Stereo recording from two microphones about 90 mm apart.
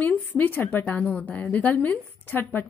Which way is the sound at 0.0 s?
20° left (ahead or behind).